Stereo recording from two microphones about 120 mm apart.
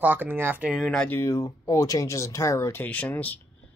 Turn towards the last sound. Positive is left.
turn(degrees=15)  # may be behind; listen again after turning